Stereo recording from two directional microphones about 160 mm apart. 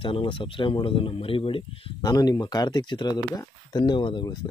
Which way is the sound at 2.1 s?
25° left (ahead or behind).